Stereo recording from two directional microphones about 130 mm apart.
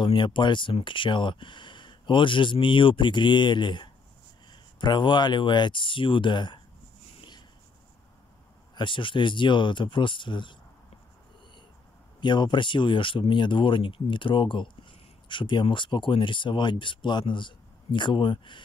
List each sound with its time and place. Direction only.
0.0 s speech: 40° left (ahead or behind)
7.2 s writing: 35° left (ahead or behind)
8.7 s speech: 40° left (ahead or behind)
12.2 s speech: 35° left (ahead or behind)